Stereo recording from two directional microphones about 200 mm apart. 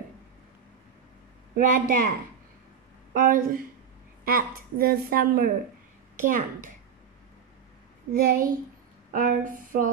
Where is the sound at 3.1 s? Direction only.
45° right (ahead or behind).